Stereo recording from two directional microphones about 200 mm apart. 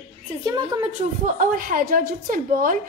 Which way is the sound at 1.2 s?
40° right (ahead or behind).